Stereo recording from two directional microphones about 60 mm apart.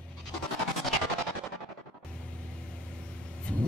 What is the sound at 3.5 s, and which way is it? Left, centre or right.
Vehicle, centre.